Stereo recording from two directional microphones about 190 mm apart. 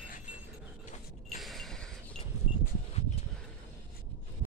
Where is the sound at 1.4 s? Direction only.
Centre (ahead or behind).